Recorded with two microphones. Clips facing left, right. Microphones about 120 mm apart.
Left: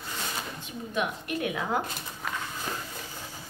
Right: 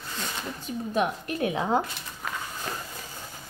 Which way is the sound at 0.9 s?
35° right (ahead or behind).